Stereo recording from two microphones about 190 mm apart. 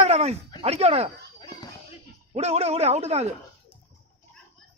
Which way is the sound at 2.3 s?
35° right (ahead or behind).